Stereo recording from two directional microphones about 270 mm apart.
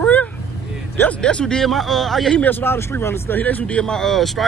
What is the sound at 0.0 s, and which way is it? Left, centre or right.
Vehicle, centre.